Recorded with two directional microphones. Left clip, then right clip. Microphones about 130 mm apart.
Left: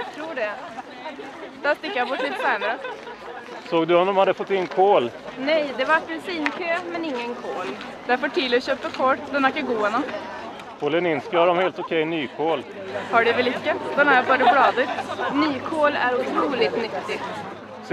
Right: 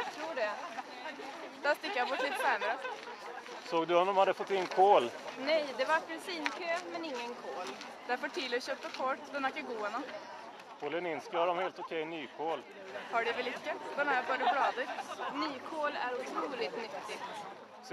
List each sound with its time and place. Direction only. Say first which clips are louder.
1.6 s a woman's voice: left 9 dB; 25° left (ahead or behind)
2.0 s speech: left 8 dB; 45° left (ahead or behind)
2.4 s a woman's voice: left 10 dB; 25° left (ahead or behind)
15.0 s chatter: left 13 dB; 55° left (ahead or behind)
15.3 s speech: left 16 dB; 35° left (ahead or behind)